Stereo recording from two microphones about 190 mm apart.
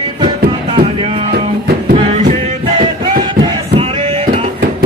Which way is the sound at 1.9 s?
40° right (ahead or behind).